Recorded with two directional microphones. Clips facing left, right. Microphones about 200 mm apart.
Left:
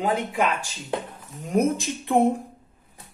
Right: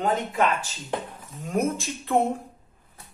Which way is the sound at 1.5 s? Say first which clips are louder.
Left 4 dB; 15° left (ahead or behind).